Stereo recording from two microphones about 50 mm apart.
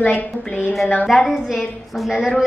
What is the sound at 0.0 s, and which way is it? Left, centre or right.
Speech, left.